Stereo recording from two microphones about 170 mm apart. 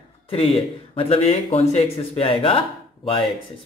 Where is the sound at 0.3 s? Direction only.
35° left (ahead or behind).